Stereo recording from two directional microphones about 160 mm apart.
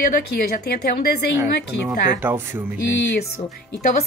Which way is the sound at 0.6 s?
80° left.